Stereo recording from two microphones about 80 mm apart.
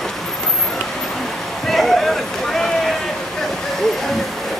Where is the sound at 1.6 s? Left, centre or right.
Centre.